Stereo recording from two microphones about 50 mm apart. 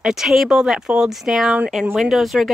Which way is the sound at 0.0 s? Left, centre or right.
Centre.